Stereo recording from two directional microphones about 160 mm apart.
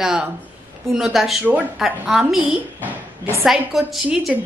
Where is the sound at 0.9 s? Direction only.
Centre (ahead or behind).